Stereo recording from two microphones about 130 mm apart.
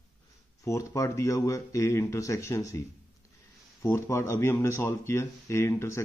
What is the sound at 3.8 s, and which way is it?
Speech, 20° left (ahead or behind).